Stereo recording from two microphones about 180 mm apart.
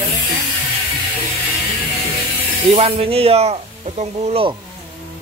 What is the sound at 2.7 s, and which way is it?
Speech, 35° right (ahead or behind).